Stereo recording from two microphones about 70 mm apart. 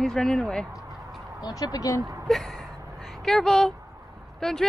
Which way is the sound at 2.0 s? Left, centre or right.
Right.